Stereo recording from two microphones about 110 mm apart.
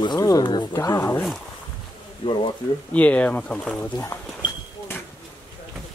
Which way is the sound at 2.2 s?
50° left (ahead or behind).